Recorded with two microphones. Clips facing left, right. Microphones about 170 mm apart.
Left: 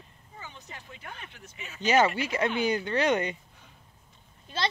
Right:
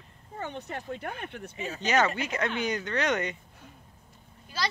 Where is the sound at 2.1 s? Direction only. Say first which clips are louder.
Left 2 dB; 30° left (ahead or behind).